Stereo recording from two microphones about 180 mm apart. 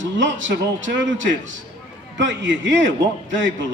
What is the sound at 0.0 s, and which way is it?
A man's voice, 90° right.